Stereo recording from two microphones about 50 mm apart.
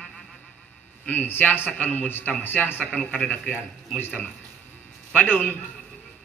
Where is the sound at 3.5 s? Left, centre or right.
Left.